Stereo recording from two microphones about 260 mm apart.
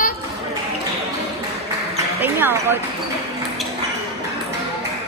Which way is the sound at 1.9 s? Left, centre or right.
Centre.